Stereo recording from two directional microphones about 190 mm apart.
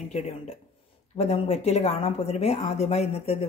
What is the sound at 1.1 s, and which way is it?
Speech, 35° left (ahead or behind).